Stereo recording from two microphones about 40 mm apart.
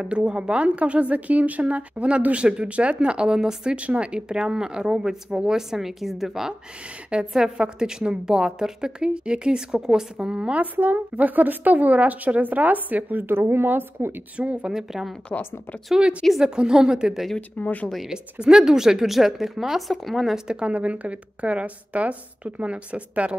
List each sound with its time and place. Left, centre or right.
0.0 s a woman's voice: right
3.7 s speech: right
4.3 s speech: centre
7.1 s a woman's voice: right
10.8 s speech: right
13.3 s a woman's voice: right
14.3 s speech: right
14.7 s speech: centre
16.0 s a woman's voice: right
17.4 s speech: left
18.0 s speech: centre
20.4 s a woman's voice: right
20.7 s speech: right